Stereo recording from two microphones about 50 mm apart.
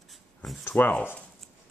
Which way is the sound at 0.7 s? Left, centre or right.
Left.